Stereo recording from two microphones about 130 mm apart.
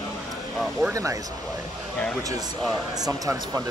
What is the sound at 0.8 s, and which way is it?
Speech, 20° right (ahead or behind).